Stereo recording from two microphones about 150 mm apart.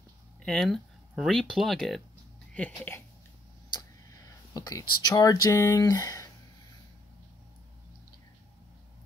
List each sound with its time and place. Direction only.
0.4 s speech: 5° left (ahead or behind)
4.6 s speech: 25° left (ahead or behind)